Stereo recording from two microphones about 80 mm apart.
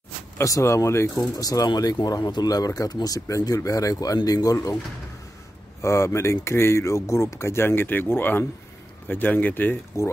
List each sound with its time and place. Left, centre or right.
0.4 s speech: left
1.3 s speech: left
5.8 s speech: left